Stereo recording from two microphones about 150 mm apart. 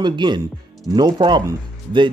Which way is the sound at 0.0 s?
30° right (ahead or behind).